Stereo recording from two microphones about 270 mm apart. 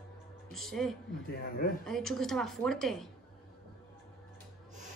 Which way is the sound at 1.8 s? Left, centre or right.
Centre.